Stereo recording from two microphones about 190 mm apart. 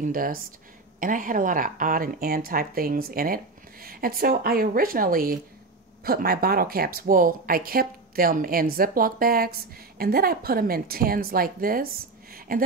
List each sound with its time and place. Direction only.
0.0 s speech: 50° right (ahead or behind)